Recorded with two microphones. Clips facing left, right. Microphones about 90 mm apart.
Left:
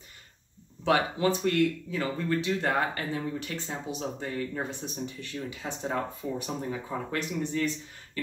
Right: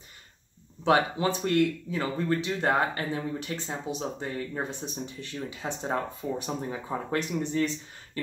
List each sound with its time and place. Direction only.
0.8 s speech: 25° right (ahead or behind)